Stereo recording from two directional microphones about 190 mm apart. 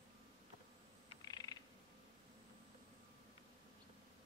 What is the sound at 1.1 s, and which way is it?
Frog, 20° left (ahead or behind).